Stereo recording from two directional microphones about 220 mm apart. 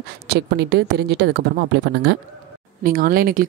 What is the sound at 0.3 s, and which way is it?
Speech, 50° right (ahead or behind).